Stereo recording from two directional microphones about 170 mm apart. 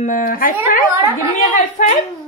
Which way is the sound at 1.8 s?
45° left (ahead or behind).